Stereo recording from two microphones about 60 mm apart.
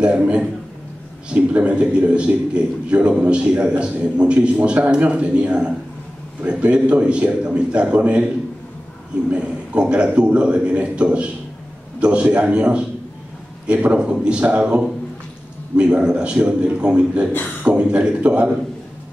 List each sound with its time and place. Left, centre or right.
0.0 s a sound: centre
1.3 s a man's voice: centre
9.3 s a man's voice: centre